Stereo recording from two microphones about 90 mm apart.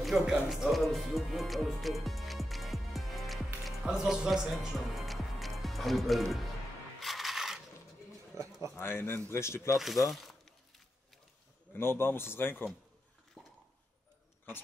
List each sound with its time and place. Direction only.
0.0 s speech: 5° right (ahead or behind)
7.0 s coin: centre (ahead or behind)
8.3 s bird: 35° right (ahead or behind)
8.7 s speech: 25° left (ahead or behind)
9.8 s speech: centre (ahead or behind)
11.7 s speech: 25° left (ahead or behind)